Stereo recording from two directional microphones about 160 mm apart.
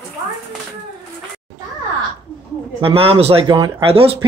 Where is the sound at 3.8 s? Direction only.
35° right (ahead or behind).